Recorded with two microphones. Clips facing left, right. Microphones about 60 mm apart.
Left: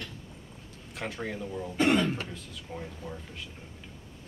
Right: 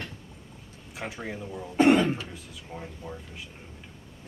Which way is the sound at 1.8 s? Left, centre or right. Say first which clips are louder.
Right 5 dB; right.